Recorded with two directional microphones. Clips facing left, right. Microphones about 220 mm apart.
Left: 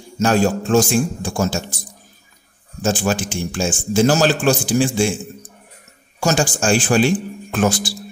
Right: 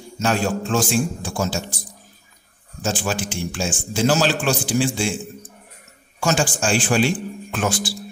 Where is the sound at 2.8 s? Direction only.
45° left (ahead or behind).